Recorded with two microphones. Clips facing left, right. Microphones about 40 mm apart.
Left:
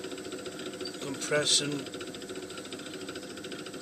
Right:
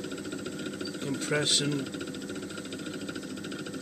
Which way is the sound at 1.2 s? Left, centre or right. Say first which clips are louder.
Left 1 dB; centre.